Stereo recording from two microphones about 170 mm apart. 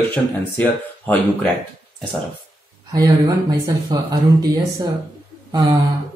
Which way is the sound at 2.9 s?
20° right (ahead or behind).